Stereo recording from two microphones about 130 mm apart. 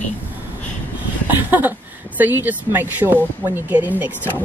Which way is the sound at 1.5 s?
15° right (ahead or behind).